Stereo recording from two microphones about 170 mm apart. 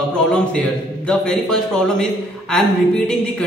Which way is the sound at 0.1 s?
5° left (ahead or behind).